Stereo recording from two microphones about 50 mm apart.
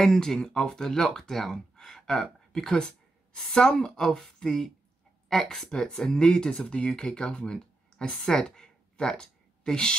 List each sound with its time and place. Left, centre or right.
0.0 s speech: centre
5.7 s speech: centre